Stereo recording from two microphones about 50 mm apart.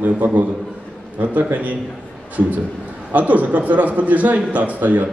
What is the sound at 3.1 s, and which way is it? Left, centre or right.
A man's voice, right.